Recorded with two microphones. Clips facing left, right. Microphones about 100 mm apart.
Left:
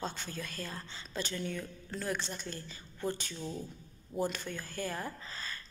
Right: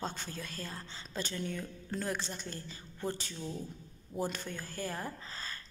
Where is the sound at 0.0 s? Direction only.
35° right (ahead or behind).